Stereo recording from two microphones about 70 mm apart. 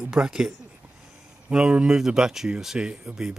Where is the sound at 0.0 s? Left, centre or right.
Centre.